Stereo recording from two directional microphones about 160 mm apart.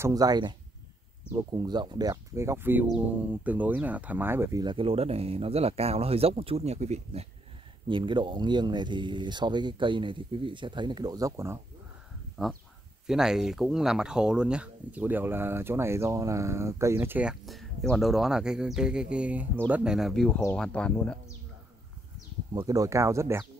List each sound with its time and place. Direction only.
0.0 s speech: 25° right (ahead or behind); by 7.2 s 40° right (ahead or behind)
7.9 s speech: 30° right (ahead or behind)
12.4 s speech: centre (ahead or behind)
22.5 s speech: 20° right (ahead or behind)